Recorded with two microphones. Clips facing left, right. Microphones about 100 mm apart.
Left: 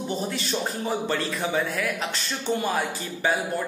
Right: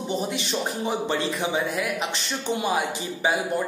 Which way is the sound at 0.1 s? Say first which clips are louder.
Right 2 dB; 15° right (ahead or behind).